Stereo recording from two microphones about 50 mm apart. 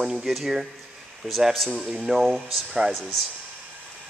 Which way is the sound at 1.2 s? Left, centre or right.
Centre.